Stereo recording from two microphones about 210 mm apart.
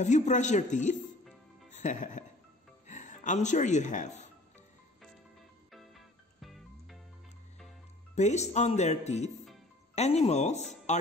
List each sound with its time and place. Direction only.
0.0 s speech: 35° left (ahead or behind)
5.7 s music: centre (ahead or behind)
8.1 s speech: 35° left (ahead or behind)